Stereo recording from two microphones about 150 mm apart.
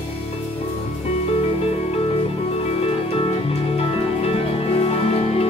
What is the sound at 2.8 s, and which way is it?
Music, 40° left (ahead or behind).